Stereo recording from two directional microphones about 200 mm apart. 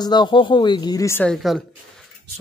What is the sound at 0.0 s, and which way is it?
Speech, 20° left (ahead or behind).